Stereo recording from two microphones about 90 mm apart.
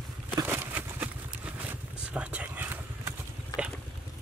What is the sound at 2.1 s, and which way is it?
Whispering, 15° right (ahead or behind).